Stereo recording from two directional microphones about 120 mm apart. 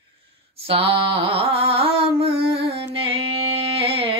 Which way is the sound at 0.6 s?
50° right (ahead or behind).